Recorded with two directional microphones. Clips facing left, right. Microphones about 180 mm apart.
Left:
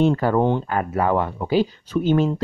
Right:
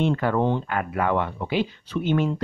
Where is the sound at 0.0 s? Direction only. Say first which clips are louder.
Left 4 dB; 40° left (ahead or behind).